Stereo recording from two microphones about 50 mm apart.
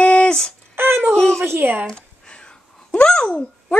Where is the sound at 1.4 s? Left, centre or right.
Right.